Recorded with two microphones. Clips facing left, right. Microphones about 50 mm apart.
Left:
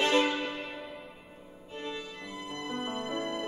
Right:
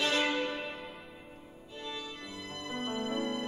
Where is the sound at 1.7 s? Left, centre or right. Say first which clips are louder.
Left 3 dB; left.